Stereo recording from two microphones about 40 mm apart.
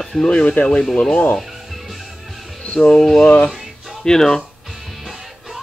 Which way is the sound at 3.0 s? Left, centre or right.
Centre.